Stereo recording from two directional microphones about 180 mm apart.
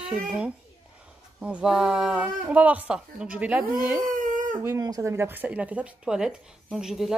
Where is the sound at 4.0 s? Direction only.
45° right (ahead or behind).